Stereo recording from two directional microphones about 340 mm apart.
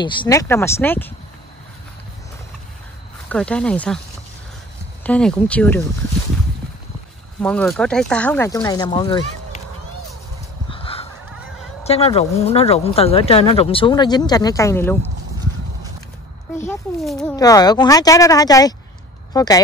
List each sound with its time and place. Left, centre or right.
0.0 s speech: centre
3.3 s speech: centre
5.0 s speech: centre
7.4 s speech: centre
10.7 s a sound: centre
11.8 s speech: centre
16.6 s speech: centre